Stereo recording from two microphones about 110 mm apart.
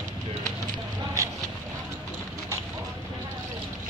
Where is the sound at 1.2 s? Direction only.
30° right (ahead or behind).